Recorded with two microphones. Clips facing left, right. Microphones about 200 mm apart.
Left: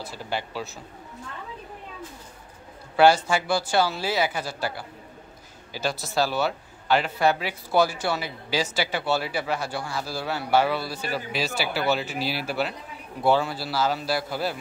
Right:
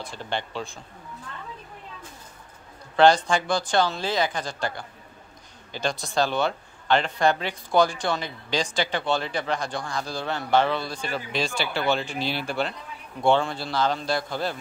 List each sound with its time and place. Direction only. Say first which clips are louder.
0.0 s speech: even; 5° left (ahead or behind)
3.0 s speech: even; 10° left (ahead or behind)